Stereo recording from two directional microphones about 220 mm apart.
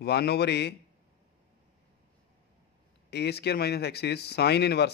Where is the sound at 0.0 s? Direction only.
50° left (ahead or behind).